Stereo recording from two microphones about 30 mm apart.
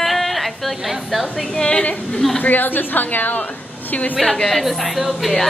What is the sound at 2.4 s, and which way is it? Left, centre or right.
A woman's voice, left.